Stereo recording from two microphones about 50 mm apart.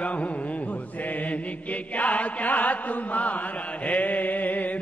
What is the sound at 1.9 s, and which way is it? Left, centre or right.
Chant, left.